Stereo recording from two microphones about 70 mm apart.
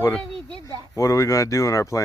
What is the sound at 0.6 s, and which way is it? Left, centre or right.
Speech, right.